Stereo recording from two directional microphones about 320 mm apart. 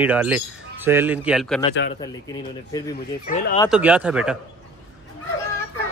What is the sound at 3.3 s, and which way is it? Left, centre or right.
Speech, left.